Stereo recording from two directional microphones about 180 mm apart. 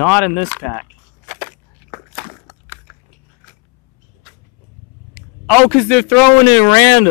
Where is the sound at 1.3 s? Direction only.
10° left (ahead or behind).